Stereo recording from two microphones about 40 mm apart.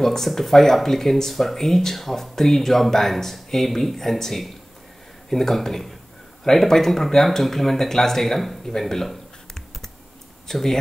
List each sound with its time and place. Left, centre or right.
0.0 s speech: centre